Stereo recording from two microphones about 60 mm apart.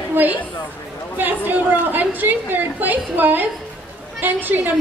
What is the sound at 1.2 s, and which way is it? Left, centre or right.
Chatter, right.